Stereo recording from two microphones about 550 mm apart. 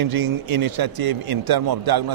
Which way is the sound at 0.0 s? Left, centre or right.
Right.